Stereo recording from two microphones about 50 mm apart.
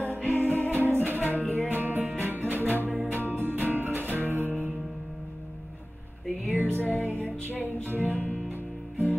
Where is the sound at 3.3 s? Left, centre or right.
Right.